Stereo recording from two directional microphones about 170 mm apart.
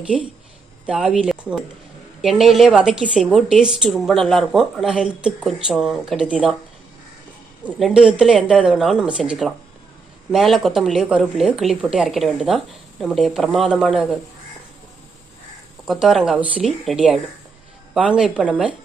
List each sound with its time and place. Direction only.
0.0 s a woman's voice: 5° right (ahead or behind)
7.6 s a woman's voice: 5° right (ahead or behind)
15.8 s a woman's voice: centre (ahead or behind)